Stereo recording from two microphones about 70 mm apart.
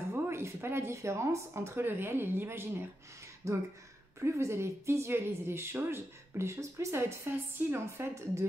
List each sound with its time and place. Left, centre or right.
0.1 s speech: right
3.4 s speech: right